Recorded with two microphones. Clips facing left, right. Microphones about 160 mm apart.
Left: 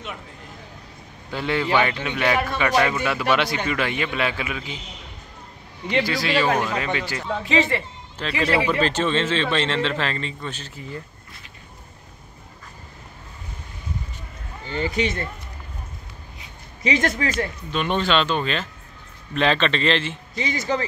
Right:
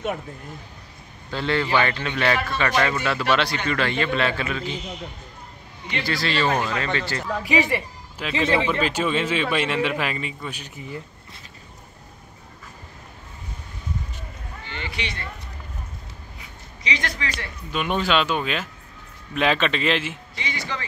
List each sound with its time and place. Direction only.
1.3 s a man's voice: 10° left (ahead or behind)
6.0 s a man's voice: 15° left (ahead or behind)
7.4 s a man's voice: 15° right (ahead or behind)
8.5 s a man's voice: 10° left (ahead or behind)
8.8 s speech: 10° right (ahead or behind)
14.7 s speech: 40° left (ahead or behind)
16.8 s speech: 50° left (ahead or behind)
17.6 s speech: 5° right (ahead or behind)
20.3 s speech: 45° left (ahead or behind)